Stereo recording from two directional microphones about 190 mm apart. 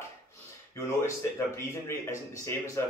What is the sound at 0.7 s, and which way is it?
Speech, 15° left (ahead or behind).